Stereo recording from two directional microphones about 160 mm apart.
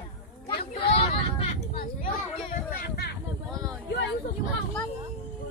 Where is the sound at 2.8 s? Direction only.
75° left (ahead or behind).